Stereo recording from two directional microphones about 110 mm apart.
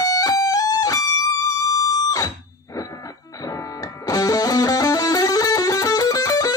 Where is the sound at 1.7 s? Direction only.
30° left (ahead or behind).